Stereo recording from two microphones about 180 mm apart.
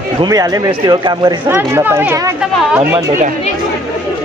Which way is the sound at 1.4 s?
10° right (ahead or behind).